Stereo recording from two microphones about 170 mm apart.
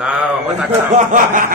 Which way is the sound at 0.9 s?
50° right (ahead or behind).